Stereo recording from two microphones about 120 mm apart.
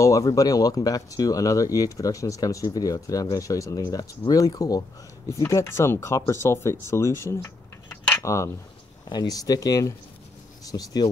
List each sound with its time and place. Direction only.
0.0 s speech: 25° left (ahead or behind)
7.4 s a sound: 20° left (ahead or behind)
9.1 s speech: 35° left (ahead or behind)